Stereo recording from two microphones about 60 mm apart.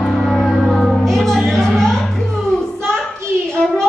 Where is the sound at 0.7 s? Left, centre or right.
Centre.